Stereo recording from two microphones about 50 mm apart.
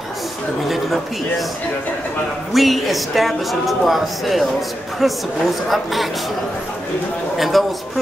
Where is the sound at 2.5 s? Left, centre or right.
Centre.